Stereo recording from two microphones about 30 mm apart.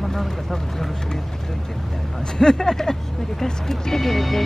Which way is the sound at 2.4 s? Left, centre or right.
Left.